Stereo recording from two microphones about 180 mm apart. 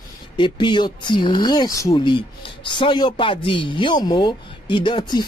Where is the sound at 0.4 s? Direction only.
25° left (ahead or behind).